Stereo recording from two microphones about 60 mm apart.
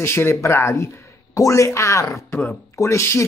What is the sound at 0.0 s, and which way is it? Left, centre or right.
Speech, left.